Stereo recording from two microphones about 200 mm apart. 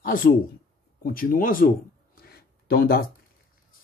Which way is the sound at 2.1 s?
50° left (ahead or behind).